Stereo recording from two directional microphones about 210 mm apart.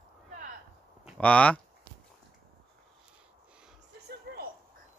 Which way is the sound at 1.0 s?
5° left (ahead or behind).